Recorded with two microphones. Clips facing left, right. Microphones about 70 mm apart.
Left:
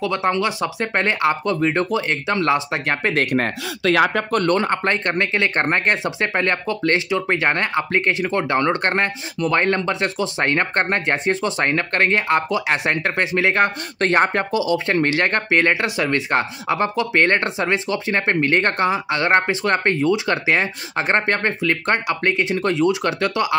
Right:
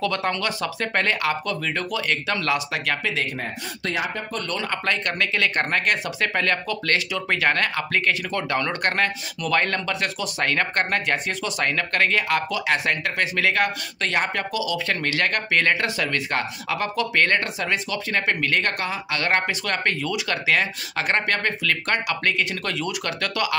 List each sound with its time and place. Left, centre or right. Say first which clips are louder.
0.0 s speech: left 4 dB; centre
3.0 s speech: left 7 dB; left
3.9 s speech: left 11 dB; left